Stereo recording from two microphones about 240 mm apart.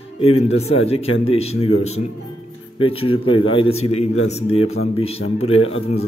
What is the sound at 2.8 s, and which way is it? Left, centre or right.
A man's voice, left.